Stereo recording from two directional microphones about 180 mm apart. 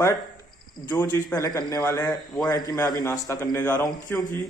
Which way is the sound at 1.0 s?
10° left (ahead or behind).